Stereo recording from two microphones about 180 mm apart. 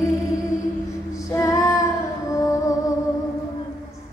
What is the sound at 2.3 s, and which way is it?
Music, 20° left (ahead or behind).